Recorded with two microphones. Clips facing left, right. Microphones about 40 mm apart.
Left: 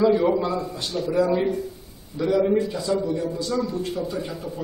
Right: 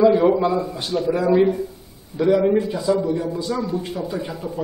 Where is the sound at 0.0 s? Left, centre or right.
Centre.